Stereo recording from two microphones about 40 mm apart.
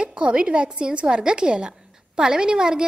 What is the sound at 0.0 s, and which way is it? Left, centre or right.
A woman's voice, right.